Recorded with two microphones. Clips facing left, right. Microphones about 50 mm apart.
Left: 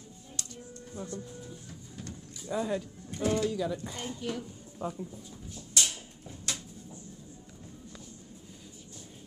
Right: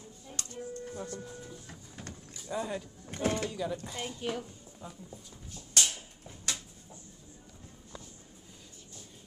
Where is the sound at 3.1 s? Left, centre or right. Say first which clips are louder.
Left 3 dB; right.